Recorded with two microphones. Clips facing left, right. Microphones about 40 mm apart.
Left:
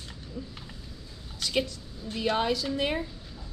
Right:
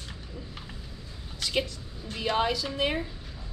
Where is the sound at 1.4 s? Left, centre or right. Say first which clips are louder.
Even; centre.